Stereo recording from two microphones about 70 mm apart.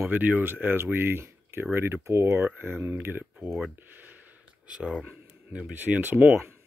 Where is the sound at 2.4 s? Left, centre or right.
Right.